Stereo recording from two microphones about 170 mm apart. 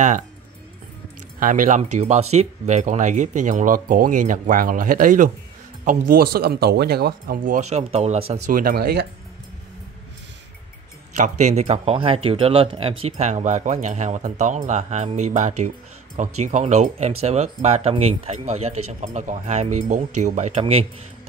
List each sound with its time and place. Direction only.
1.4 s speech: 50° right (ahead or behind)
11.1 s speech: 45° right (ahead or behind)